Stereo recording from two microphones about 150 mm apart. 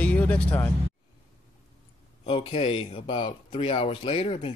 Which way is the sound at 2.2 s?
40° left (ahead or behind).